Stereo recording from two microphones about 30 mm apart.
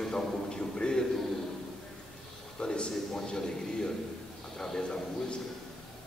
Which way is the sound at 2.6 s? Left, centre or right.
Left.